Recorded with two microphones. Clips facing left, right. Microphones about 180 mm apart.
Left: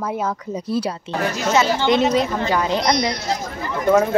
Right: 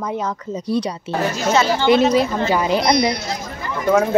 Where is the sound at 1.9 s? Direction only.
Centre (ahead or behind).